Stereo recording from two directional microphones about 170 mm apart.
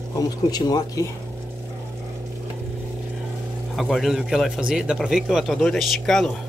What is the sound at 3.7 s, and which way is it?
Speech, centre (ahead or behind).